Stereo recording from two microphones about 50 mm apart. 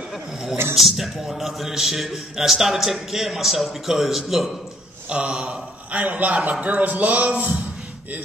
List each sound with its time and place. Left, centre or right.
0.1 s speech: centre
5.1 s a man's voice: right